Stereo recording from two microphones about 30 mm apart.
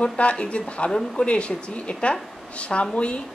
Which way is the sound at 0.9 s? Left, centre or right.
Left.